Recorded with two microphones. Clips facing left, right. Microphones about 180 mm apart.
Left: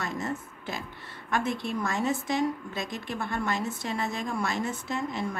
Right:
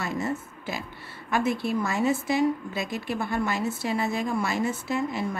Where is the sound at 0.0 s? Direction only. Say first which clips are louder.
Right 3 dB; 5° right (ahead or behind).